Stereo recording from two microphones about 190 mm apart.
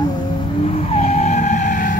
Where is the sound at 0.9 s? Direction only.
35° left (ahead or behind).